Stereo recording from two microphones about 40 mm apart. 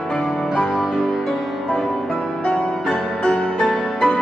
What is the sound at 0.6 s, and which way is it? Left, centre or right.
Music, centre.